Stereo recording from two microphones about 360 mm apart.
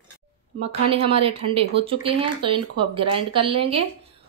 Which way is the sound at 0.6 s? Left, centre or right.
Centre.